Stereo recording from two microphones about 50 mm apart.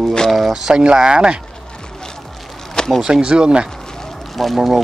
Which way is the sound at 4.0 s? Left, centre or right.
Centre.